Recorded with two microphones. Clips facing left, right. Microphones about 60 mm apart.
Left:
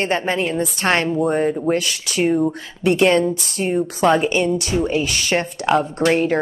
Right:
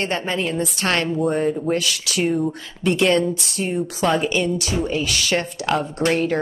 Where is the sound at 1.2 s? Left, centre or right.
Centre.